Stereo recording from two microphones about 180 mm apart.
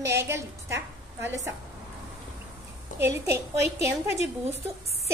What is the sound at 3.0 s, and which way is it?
Speech, 15° right (ahead or behind).